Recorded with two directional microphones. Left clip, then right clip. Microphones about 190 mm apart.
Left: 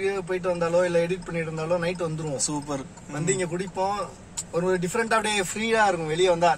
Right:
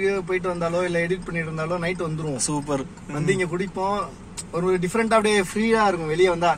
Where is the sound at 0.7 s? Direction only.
10° left (ahead or behind).